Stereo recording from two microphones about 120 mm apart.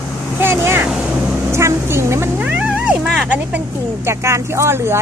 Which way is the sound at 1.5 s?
20° right (ahead or behind).